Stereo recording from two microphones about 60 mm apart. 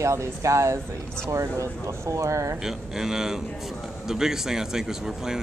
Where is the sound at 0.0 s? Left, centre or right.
Right.